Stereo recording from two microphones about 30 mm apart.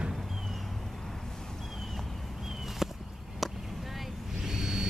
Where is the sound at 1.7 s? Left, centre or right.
Centre.